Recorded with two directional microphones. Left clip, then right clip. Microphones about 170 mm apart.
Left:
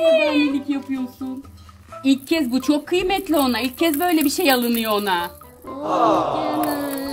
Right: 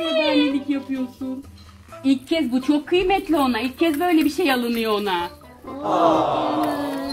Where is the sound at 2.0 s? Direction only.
45° left (ahead or behind); by 5.3 s 75° left (ahead or behind).